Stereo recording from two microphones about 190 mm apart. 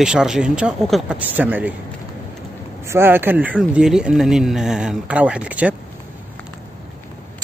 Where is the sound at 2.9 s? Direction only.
10° right (ahead or behind).